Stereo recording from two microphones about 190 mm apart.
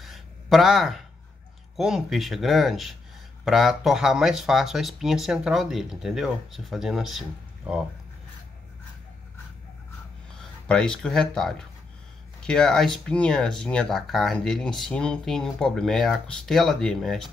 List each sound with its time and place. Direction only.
0.0 s a sound: centre (ahead or behind)
1.8 s speech: centre (ahead or behind)
10.7 s speech: 5° left (ahead or behind)